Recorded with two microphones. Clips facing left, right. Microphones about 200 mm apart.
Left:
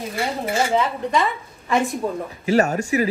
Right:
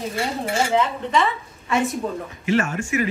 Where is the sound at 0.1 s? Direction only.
Centre (ahead or behind).